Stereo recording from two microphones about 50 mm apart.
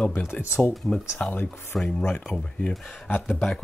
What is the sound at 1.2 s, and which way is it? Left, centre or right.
Speech, left.